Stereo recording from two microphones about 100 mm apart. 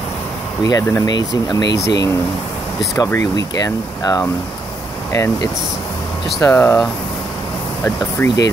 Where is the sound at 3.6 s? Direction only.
40° left (ahead or behind).